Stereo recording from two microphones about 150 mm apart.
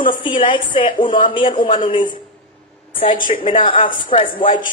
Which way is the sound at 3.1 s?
65° left (ahead or behind).